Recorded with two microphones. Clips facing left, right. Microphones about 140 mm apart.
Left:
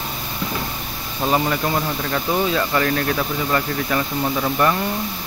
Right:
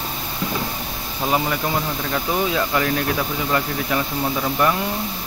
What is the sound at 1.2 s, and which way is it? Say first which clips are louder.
Speech: left 2 dB; 5° right (ahead or behind).